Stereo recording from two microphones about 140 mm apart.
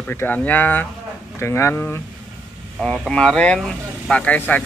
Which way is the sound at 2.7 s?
Centre (ahead or behind).